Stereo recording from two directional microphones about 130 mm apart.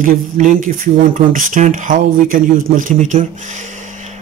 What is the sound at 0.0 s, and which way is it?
A man's voice, 80° right.